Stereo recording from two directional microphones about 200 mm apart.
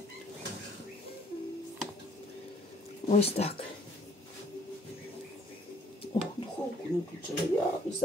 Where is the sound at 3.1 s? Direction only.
30° left (ahead or behind).